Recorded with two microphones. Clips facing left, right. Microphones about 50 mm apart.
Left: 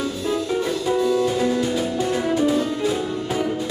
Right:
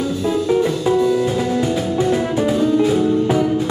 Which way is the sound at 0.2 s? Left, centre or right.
Right.